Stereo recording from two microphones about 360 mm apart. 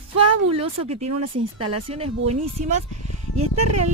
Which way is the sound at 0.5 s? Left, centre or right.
Centre.